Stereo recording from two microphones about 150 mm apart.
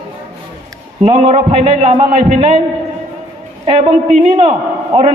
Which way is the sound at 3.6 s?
40° right (ahead or behind).